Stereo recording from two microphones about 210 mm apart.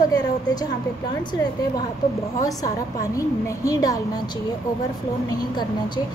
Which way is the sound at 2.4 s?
15° left (ahead or behind).